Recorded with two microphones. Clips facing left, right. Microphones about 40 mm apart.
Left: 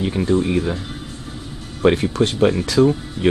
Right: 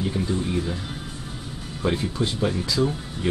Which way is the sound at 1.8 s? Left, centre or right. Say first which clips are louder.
Left 9 dB; left.